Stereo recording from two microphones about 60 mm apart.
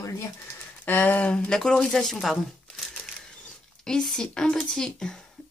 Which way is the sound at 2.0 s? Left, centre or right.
Centre.